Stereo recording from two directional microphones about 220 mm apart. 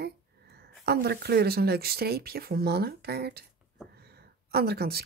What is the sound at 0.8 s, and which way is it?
A woman's voice, 45° right (ahead or behind).